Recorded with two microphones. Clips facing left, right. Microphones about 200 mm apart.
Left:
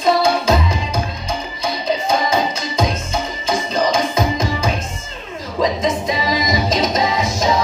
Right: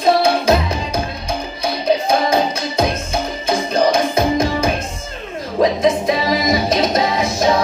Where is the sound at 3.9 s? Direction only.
60° right (ahead or behind).